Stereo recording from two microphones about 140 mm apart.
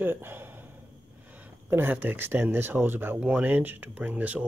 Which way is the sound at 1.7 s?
15° right (ahead or behind).